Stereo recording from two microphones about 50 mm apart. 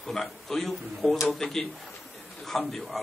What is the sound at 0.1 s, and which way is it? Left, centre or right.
A man's voice, centre.